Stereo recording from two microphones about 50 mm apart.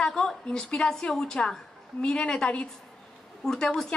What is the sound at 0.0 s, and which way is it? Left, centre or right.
Speech, centre.